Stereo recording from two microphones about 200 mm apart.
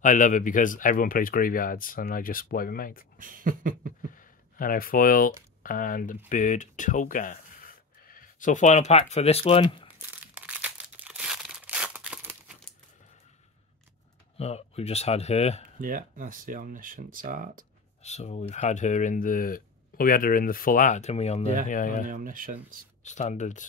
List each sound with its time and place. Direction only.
0.0 s speech: 40° left (ahead or behind)
3.2 s speech: 45° right (ahead or behind)
4.1 s a sound: 45° left (ahead or behind)
5.6 s speech: 45° left (ahead or behind); by 9.8 s 25° left (ahead or behind)
10.6 s crumpling: 5° right (ahead or behind)
14.3 s speech: 30° left (ahead or behind)
15.8 s speech: 45° right (ahead or behind)
18.0 s speech: 35° left (ahead or behind)
22.0 s speech: 40° right (ahead or behind)
23.0 s speech: 35° left (ahead or behind)